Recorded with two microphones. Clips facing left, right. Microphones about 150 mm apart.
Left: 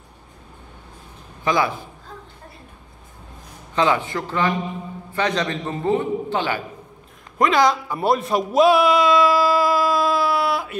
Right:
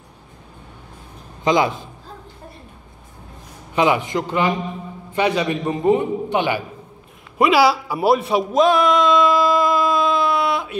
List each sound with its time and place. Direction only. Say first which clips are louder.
1.4 s a man's voice: right 3 dB; 20° right (ahead or behind)
3.7 s a man's voice: right 2 dB; 15° right (ahead or behind)
8.5 s a sound: left 1 dB; 5° left (ahead or behind)